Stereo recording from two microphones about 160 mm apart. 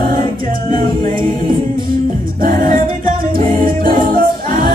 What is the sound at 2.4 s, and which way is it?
A capella, 60° right (ahead or behind).